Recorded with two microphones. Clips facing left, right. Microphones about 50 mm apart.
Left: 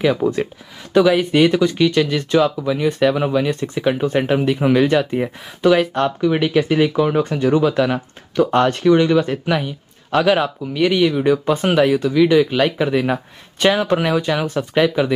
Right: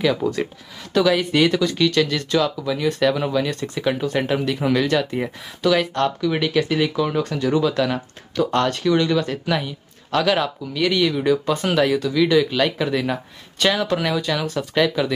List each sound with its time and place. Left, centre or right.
0.0 s speech: left